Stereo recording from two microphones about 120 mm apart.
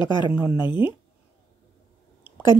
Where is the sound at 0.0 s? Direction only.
40° left (ahead or behind).